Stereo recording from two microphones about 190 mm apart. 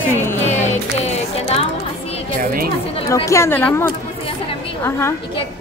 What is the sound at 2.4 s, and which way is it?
Speech, 50° right (ahead or behind).